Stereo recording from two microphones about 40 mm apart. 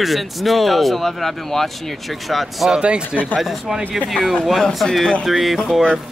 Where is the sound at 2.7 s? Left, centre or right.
Right.